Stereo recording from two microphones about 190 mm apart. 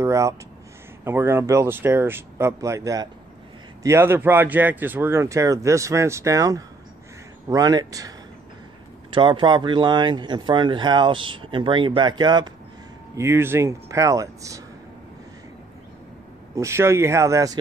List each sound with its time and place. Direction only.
0.0 s speech: 15° right (ahead or behind)
9.1 s speech: 25° right (ahead or behind)
16.5 s speech: 15° right (ahead or behind)